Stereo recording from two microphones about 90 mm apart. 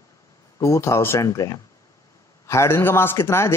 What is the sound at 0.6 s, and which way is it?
A man's voice, 35° left (ahead or behind).